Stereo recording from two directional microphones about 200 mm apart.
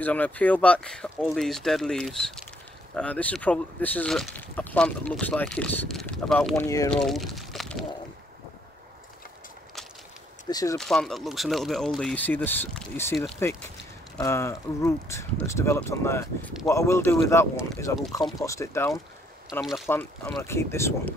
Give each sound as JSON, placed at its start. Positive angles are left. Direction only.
{"t": 0.0, "sound": "speech", "side_deg": 5}
{"t": 6.5, "sound": "speech", "side_deg": 15}
{"t": 6.9, "sound": "speech", "side_deg": 0}
{"t": 10.5, "sound": "speech", "side_deg": 15}
{"t": 10.8, "sound": "speech", "side_deg": 0}